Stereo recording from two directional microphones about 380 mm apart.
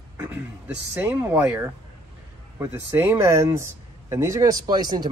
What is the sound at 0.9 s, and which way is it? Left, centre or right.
Speech, centre.